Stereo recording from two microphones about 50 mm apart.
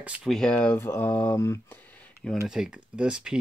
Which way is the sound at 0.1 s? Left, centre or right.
Right.